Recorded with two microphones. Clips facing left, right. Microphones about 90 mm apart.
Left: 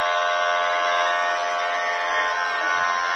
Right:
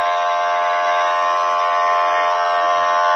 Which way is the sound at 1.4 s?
90° right.